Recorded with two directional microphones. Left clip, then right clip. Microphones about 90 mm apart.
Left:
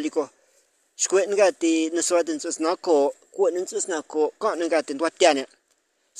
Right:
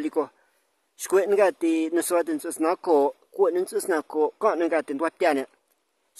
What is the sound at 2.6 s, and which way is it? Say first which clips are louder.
Speech: even; 5° right (ahead or behind).